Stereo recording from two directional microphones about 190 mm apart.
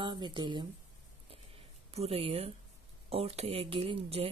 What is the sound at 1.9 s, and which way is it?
Speech, 30° right (ahead or behind).